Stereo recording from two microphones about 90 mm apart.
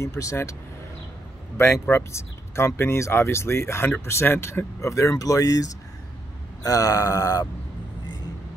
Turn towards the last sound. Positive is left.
turn(degrees=40)  # may be behind; listen again after turning